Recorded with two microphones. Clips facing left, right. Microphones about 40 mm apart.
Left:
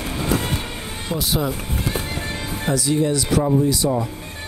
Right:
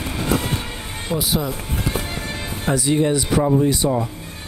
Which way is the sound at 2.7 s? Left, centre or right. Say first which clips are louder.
Right 2 dB; right.